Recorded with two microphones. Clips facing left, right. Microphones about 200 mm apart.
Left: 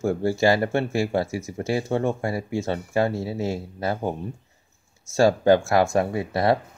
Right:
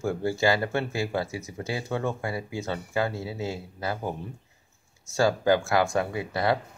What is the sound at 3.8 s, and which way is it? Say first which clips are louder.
Speech: left 5 dB; 25° left (ahead or behind).